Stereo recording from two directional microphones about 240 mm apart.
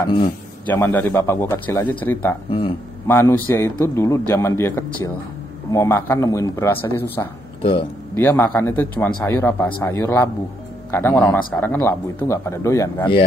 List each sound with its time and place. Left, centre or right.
0.0 s a man's voice: left
0.7 s a man's voice: centre